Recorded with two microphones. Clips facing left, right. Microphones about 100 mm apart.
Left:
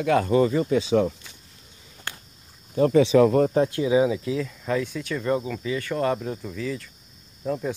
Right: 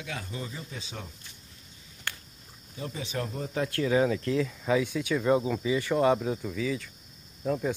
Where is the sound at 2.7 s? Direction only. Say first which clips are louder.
Left 18 dB; 70° left (ahead or behind).